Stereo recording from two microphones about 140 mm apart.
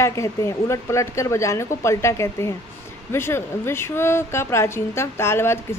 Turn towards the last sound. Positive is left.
turn(degrees=15)  # may be behind; listen again after turning